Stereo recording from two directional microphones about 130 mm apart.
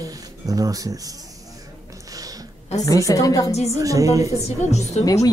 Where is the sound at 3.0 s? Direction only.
25° left (ahead or behind).